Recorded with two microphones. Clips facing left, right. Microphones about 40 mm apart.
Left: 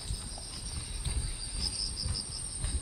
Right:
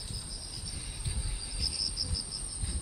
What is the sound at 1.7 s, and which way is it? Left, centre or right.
Cricket, centre.